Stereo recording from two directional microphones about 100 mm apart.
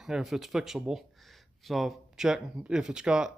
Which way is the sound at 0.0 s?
5° right (ahead or behind).